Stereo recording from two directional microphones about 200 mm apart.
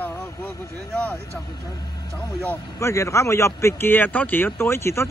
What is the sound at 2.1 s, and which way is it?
A man's voice, 10° left (ahead or behind).